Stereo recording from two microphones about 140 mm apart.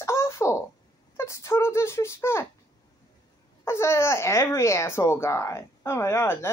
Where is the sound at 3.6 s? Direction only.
20° left (ahead or behind).